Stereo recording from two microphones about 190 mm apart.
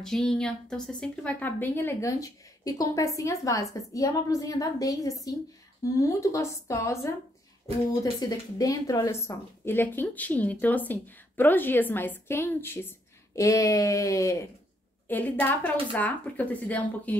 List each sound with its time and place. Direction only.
0.0 s speech: 5° left (ahead or behind)